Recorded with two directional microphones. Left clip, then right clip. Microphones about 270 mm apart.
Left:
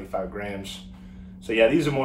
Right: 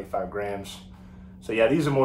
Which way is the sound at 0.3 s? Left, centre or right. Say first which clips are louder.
Right 2 dB; centre.